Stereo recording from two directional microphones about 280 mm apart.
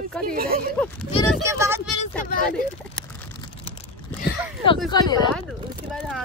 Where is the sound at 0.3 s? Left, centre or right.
Right.